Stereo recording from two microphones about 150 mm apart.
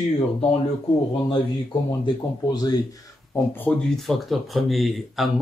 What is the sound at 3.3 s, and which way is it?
Speech, 10° left (ahead or behind).